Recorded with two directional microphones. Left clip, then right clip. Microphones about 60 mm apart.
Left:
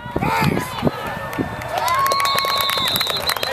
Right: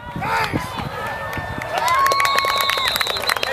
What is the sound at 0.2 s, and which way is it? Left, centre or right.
Run, left.